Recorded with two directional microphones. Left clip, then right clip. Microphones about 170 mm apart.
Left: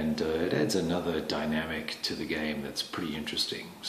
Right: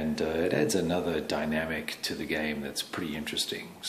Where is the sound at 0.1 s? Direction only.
25° right (ahead or behind).